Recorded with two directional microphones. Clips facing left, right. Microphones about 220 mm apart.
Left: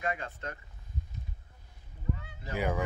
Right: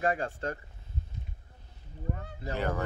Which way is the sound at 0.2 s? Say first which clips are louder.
Right 7 dB; 30° right (ahead or behind).